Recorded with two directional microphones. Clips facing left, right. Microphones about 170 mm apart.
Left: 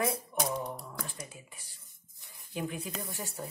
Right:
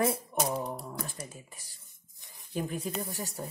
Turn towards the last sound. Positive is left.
turn(degrees=-40)  # may be behind; listen again after turning